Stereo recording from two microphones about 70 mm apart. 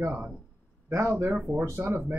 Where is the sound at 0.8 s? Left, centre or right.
Right.